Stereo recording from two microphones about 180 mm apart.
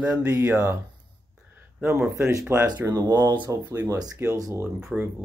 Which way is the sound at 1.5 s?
10° right (ahead or behind).